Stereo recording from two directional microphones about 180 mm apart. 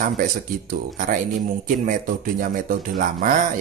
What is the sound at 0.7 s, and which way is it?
Speech, 50° right (ahead or behind).